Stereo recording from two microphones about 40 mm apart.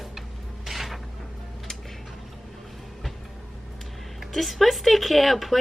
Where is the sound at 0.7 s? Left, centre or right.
Centre.